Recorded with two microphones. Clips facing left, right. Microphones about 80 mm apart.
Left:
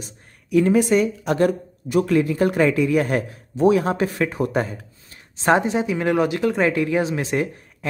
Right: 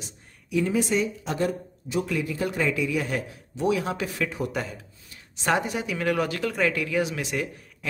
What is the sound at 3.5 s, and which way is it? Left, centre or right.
Speech, left.